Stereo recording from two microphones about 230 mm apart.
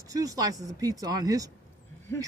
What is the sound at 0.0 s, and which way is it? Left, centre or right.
Speech, centre.